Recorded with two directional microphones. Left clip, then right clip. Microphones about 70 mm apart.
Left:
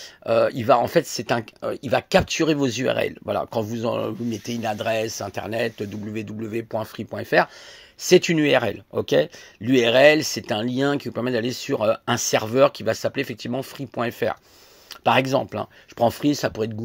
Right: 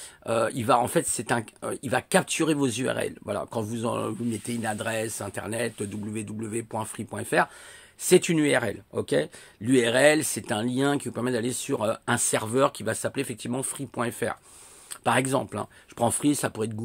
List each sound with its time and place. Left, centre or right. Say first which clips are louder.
0.2 s speech: left 6 dB; left
2.9 s speech: left 6 dB; left
3.6 s speech: left 4 dB; centre
5.8 s speech: left 3 dB; centre
7.1 s speech: left 5 dB; centre
8.5 s speech: left 5 dB; left
12.9 s speech: left 5 dB; centre
16.0 s speech: left 5 dB; centre